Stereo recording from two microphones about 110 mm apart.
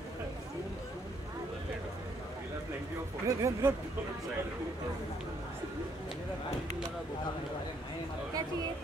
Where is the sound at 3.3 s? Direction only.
30° right (ahead or behind).